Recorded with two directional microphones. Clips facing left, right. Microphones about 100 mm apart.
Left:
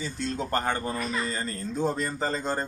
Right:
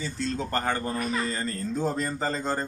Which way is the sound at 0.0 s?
10° left (ahead or behind).